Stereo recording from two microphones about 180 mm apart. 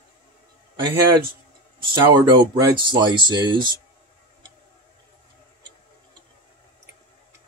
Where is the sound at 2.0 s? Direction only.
25° right (ahead or behind).